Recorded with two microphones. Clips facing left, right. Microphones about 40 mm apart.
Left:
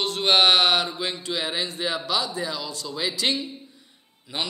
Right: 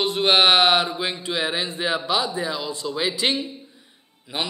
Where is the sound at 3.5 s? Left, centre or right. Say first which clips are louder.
Right 1 dB; centre.